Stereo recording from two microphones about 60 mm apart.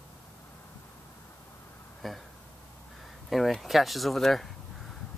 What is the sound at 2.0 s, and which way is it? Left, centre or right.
Speech, centre.